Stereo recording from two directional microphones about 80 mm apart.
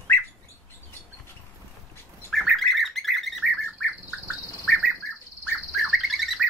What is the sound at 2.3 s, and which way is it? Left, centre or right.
Bird, centre.